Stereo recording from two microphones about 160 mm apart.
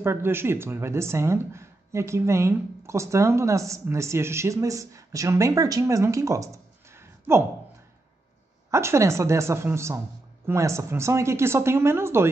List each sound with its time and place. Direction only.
0.0 s speech: 15° right (ahead or behind)
8.6 s speech: 15° right (ahead or behind)